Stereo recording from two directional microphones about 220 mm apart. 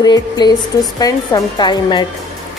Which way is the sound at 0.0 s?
20° left (ahead or behind).